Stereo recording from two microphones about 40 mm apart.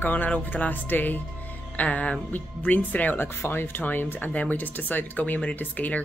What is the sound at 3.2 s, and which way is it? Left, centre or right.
Speech, left.